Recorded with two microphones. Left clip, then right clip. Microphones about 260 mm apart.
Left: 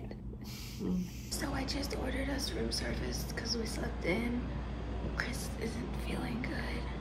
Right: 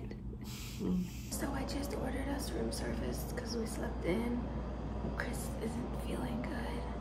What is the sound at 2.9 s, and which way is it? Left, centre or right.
Speech, right.